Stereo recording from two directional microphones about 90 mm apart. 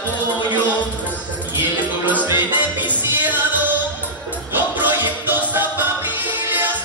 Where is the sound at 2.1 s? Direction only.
20° right (ahead or behind).